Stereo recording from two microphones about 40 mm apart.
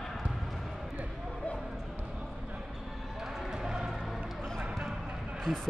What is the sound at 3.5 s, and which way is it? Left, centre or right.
Music, centre.